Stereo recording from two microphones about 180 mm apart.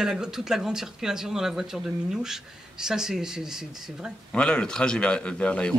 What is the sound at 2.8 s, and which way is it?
A man's voice, 5° right (ahead or behind).